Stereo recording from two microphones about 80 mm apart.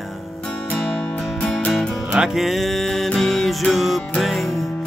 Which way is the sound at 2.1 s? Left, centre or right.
Centre.